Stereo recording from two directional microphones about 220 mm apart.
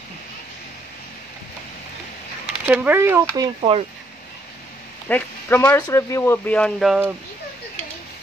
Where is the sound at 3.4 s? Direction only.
25° right (ahead or behind).